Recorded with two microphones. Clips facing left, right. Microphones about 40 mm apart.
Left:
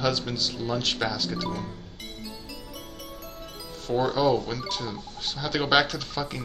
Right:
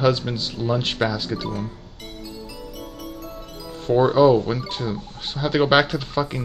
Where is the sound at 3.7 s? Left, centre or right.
Right.